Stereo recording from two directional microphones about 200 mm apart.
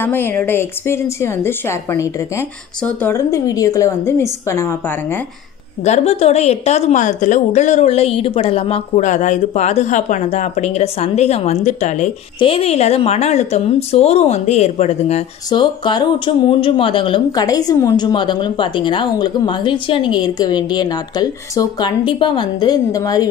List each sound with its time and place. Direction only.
0.0 s a woman's voice: 10° left (ahead or behind)
5.9 s a woman's voice: 30° left (ahead or behind)